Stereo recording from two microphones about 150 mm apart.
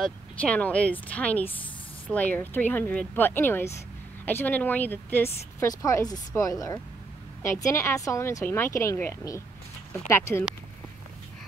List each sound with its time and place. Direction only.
0.0 s speech: 10° left (ahead or behind)